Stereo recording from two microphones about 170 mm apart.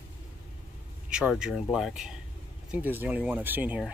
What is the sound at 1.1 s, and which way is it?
Speech, 5° right (ahead or behind).